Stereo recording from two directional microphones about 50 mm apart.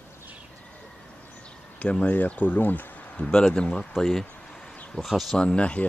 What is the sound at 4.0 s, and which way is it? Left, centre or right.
Speech, centre.